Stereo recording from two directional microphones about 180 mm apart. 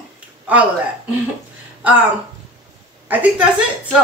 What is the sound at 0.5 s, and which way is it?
Speech, 10° right (ahead or behind).